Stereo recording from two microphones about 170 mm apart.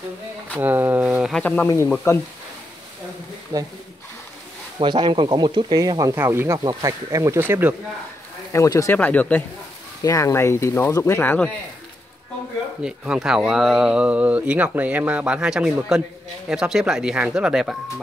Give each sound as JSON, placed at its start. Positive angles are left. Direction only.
{"t": 0.6, "sound": "speech", "side_deg": -10}
{"t": 1.3, "sound": "speech", "side_deg": 10}
{"t": 3.5, "sound": "speech", "side_deg": -20}
{"t": 4.7, "sound": "speech", "side_deg": -25}
{"t": 8.5, "sound": "speech", "side_deg": 20}
{"t": 12.8, "sound": "speech", "side_deg": -5}